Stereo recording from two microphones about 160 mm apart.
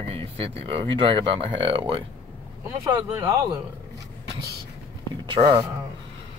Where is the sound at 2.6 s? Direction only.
15° right (ahead or behind).